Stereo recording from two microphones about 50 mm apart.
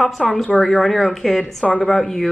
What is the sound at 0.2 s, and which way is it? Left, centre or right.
A woman's voice, centre.